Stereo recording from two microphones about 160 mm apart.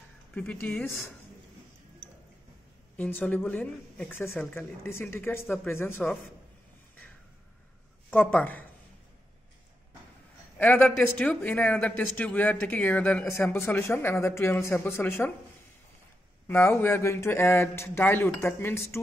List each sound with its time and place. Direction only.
0.3 s speech: 5° left (ahead or behind)
3.0 s speech: 10° left (ahead or behind)
8.1 s speech: 10° left (ahead or behind)
10.6 s speech: 10° left (ahead or behind)
16.4 s speech: 15° left (ahead or behind)